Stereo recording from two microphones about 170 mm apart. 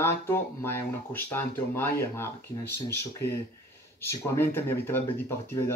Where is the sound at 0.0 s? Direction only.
15° left (ahead or behind).